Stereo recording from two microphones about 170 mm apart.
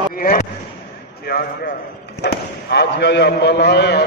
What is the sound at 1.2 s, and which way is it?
Speech, 65° left (ahead or behind).